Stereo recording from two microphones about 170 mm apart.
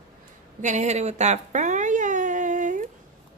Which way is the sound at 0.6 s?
45° right (ahead or behind).